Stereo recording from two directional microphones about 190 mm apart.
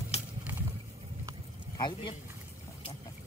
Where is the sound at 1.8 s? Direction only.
25° left (ahead or behind).